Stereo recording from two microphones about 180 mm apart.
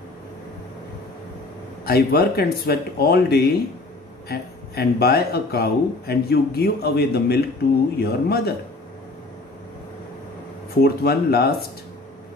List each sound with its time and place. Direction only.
1.9 s speech: 60° left (ahead or behind)
10.8 s speech: 60° left (ahead or behind)